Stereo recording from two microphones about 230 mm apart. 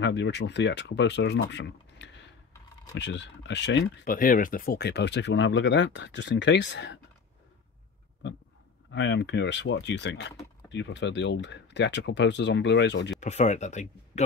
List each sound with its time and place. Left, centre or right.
0.0 s speech: left
8.9 s speech: left
13.2 s speech: left